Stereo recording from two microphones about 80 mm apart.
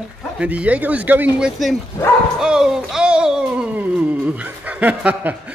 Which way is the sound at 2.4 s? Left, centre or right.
Centre.